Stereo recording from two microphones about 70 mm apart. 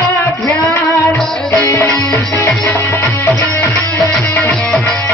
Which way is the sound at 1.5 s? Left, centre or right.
Left.